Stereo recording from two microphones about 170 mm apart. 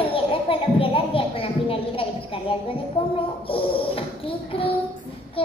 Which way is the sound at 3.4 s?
30° left (ahead or behind).